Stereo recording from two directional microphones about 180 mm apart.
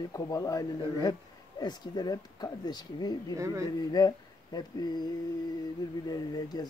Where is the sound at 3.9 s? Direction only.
20° left (ahead or behind).